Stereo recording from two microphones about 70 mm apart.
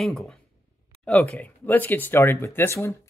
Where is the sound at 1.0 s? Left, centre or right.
Centre.